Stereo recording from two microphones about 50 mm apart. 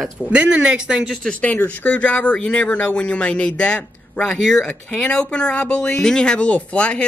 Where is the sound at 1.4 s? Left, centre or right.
Left.